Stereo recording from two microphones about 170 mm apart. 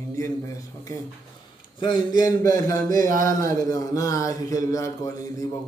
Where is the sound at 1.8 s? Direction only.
25° left (ahead or behind).